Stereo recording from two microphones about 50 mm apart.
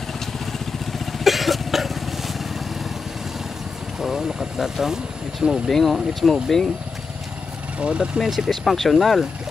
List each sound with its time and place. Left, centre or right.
0.5 s vehicle: centre
4.0 s speech: centre
5.7 s speech: centre
7.8 s speech: right
8.2 s speech: centre